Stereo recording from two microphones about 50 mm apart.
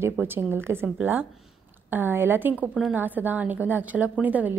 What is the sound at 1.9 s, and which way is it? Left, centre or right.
A woman's voice, right.